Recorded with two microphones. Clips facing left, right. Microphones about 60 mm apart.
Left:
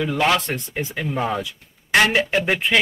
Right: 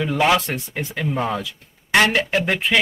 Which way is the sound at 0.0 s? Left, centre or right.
Centre.